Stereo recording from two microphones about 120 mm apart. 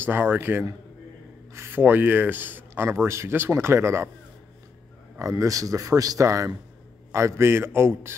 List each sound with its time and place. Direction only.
0.0 s a man's voice: 15° right (ahead or behind)
5.2 s speech: 30° right (ahead or behind)